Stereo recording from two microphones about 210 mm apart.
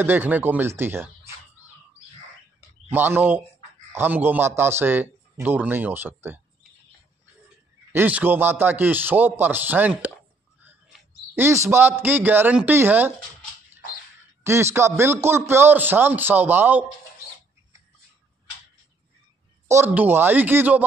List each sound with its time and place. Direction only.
0.0 s a man's voice: 10° right (ahead or behind)
2.9 s a man's voice: 10° right (ahead or behind)
7.9 s a man's voice: 10° right (ahead or behind)
10.6 s a sound: 10° right (ahead or behind)
12.0 s a man's voice: 10° right (ahead or behind)
14.4 s a man's voice: 10° right (ahead or behind)
19.7 s a man's voice: 10° right (ahead or behind)